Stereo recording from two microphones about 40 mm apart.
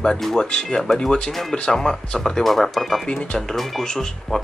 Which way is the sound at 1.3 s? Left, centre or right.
Centre.